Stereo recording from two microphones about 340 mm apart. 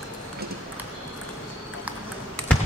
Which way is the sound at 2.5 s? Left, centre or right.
Centre.